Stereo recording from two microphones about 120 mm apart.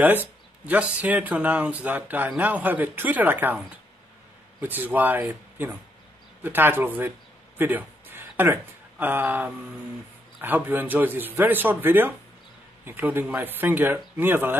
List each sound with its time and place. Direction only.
0.0 s speech: 15° right (ahead or behind)